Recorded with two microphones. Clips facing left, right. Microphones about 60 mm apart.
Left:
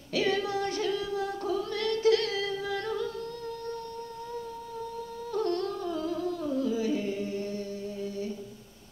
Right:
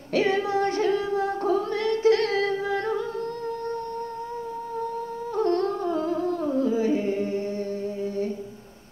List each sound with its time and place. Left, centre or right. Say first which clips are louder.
0.1 s music: right 5 dB; right
2.6 s singing: right 5 dB; right
5.3 s music: right 6 dB; right